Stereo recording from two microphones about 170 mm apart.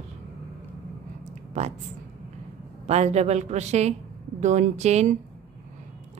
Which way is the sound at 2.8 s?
40° right (ahead or behind).